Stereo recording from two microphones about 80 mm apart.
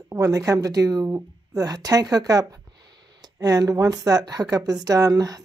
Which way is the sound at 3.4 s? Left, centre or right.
Right.